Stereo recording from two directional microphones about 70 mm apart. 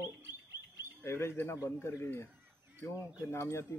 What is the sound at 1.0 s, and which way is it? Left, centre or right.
Speech, left.